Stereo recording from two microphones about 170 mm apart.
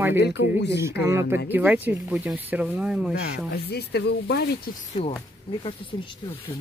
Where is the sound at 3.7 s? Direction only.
75° left (ahead or behind).